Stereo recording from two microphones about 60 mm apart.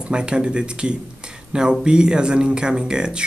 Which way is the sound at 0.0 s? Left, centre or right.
Centre.